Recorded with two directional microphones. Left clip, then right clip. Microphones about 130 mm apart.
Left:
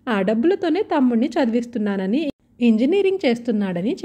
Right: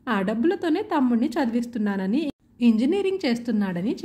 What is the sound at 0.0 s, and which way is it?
A woman's voice, 35° left (ahead or behind).